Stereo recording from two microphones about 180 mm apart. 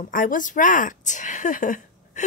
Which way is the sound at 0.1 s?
50° left (ahead or behind).